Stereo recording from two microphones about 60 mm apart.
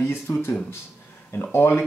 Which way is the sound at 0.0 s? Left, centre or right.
Left.